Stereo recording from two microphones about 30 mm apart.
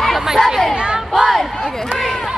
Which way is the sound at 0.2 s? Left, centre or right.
Centre.